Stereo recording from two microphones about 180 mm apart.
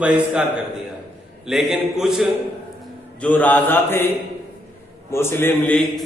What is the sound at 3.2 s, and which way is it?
Speech, 10° left (ahead or behind).